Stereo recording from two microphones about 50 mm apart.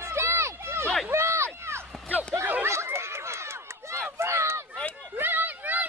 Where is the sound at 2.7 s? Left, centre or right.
Right.